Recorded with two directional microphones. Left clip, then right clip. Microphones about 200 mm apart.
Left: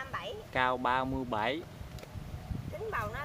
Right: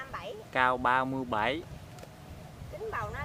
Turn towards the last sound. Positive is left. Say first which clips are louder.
# even
turn(degrees=-5)  # may be behind; listen again after turning